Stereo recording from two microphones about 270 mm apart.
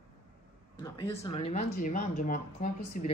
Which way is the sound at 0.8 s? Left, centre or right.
Centre.